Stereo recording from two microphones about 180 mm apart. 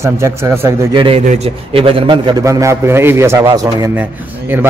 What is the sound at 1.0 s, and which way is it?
A man's voice, 30° right (ahead or behind).